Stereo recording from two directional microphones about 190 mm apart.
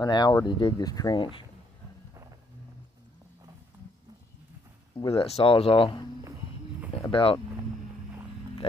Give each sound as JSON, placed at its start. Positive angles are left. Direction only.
{"t": 0.0, "sound": "speech", "side_deg": 20}
{"t": 4.9, "sound": "speech", "side_deg": 30}
{"t": 7.1, "sound": "speech", "side_deg": 30}